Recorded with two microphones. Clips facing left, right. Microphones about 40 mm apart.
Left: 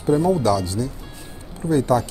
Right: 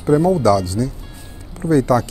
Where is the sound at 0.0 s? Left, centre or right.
Right.